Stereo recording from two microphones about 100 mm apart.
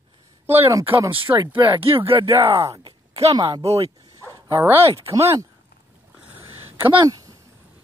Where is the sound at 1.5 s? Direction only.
65° right (ahead or behind).